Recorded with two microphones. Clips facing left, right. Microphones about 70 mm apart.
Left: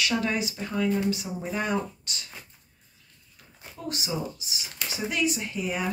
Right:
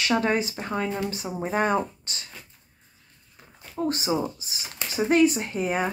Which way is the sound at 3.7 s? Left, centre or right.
Right.